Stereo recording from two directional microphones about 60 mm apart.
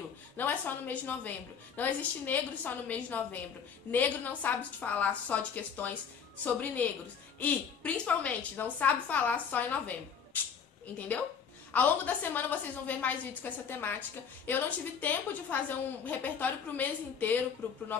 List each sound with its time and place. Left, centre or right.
0.4 s a woman's voice: left
11.7 s a woman's voice: left